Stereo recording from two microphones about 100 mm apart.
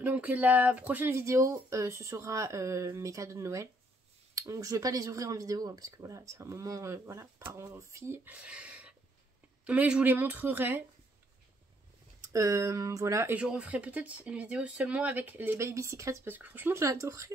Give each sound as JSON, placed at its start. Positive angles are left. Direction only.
{"t": 0.0, "sound": "speech", "side_deg": -15}
{"t": 12.2, "sound": "speech", "side_deg": -35}
{"t": 13.3, "sound": "speech", "side_deg": -10}
{"t": 16.3, "sound": "speech", "side_deg": -20}